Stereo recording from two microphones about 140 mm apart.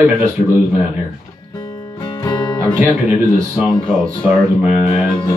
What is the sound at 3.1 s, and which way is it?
Speech, 5° right (ahead or behind).